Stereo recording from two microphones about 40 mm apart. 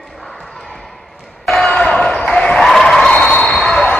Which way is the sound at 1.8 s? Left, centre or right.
Centre.